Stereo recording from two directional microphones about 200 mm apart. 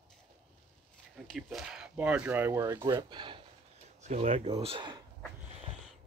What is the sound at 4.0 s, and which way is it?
Speech, 35° right (ahead or behind).